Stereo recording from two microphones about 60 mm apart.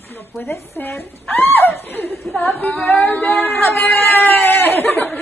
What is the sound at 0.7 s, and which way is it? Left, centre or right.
Speech, left.